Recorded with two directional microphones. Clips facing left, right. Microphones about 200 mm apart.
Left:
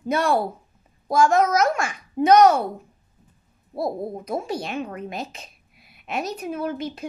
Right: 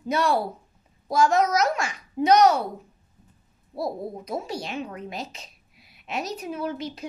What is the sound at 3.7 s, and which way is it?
Speech, 50° left (ahead or behind).